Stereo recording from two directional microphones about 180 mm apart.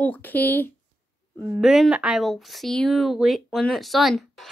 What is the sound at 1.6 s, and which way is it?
A woman's voice, 5° right (ahead or behind).